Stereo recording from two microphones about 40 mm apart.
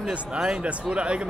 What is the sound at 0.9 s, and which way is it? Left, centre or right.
Speech, right.